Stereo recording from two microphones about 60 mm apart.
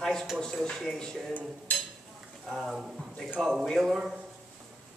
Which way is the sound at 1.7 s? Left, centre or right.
Left.